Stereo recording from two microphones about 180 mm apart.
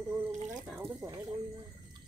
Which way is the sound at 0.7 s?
15° right (ahead or behind).